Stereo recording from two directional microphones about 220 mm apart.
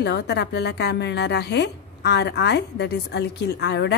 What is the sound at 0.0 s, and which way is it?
A woman's voice, 50° left (ahead or behind).